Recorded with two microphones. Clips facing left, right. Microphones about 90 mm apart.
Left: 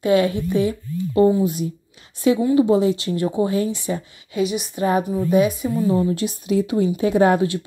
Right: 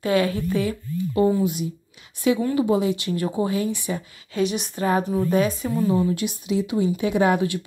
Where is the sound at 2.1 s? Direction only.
30° left (ahead or behind).